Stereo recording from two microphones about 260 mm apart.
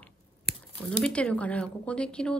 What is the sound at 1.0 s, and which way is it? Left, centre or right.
Speech, centre.